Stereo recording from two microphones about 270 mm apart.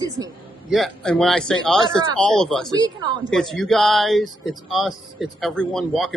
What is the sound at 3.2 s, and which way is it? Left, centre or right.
Speech, centre.